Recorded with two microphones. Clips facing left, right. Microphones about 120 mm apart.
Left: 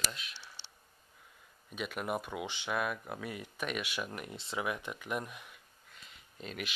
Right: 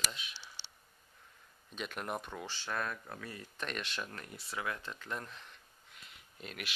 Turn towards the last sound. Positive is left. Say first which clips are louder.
# left 4 dB
turn(degrees=0)  # may be behind; listen again after turning